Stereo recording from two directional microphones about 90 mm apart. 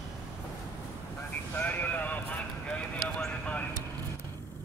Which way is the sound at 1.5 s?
20° left (ahead or behind).